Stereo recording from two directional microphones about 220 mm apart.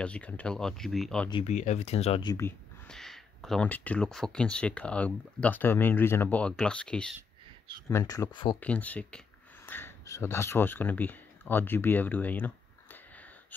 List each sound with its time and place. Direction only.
0.0 s speech: 5° left (ahead or behind)
1.3 s speech: 30° left (ahead or behind)
2.3 s speech: 5° left (ahead or behind)
7.9 s speech: 15° left (ahead or behind)
8.5 s speech: 5° left (ahead or behind)